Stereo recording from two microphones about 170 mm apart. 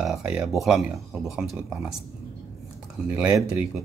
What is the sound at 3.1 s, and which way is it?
Speech, 10° right (ahead or behind).